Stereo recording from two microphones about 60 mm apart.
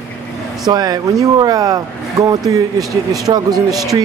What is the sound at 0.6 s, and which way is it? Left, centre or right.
A man's voice, right.